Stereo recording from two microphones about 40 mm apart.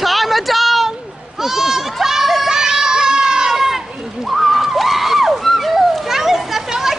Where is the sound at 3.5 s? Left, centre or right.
Centre.